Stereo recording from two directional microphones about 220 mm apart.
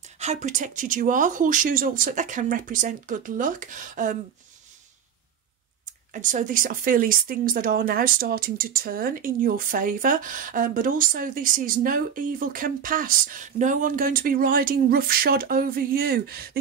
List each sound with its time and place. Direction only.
0.0 s speech: 30° right (ahead or behind)
6.1 s speech: 35° right (ahead or behind)